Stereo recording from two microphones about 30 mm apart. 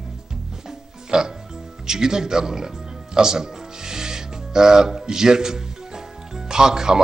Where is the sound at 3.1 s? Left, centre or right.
Right.